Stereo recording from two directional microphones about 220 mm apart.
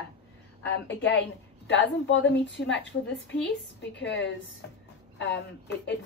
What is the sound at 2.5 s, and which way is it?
A woman's voice, 55° left (ahead or behind).